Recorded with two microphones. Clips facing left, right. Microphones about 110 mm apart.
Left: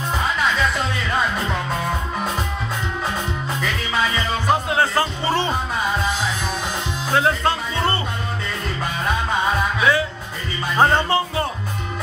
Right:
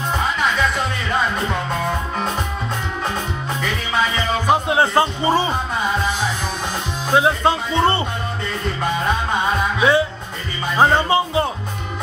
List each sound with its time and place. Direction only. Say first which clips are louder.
4.5 s music: right 2 dB; 20° right (ahead or behind)
7.2 s speech: right 3 dB; 15° right (ahead or behind)
9.8 s music: right 5 dB; 25° right (ahead or behind)
10.8 s speech: right 2 dB; 15° right (ahead or behind)